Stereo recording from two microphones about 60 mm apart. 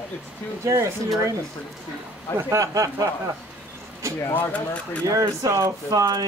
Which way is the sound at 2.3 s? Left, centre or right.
Right.